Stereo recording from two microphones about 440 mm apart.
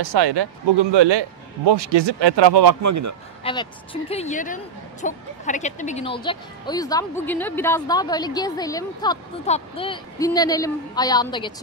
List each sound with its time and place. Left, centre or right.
0.0 s speech: right
2.8 s a man's voice: right
3.4 s speech: centre